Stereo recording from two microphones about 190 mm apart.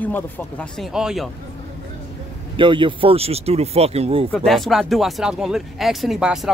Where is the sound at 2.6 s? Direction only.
25° right (ahead or behind).